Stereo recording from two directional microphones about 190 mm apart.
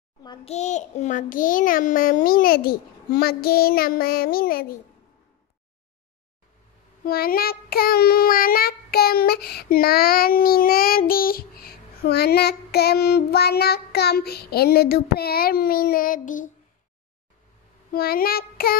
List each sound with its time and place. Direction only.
0.5 s child singing: 35° left (ahead or behind)
7.1 s child singing: 50° left (ahead or behind)
17.9 s child singing: 50° left (ahead or behind)